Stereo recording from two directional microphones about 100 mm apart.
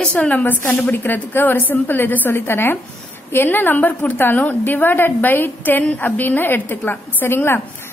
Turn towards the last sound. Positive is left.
turn(degrees=25)  # may be behind; listen again after turning